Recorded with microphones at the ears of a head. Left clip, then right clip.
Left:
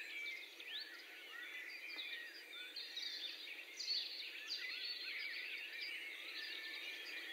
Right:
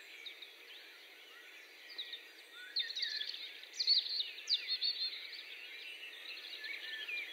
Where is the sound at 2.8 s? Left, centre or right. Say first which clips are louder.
Right 10 dB; right.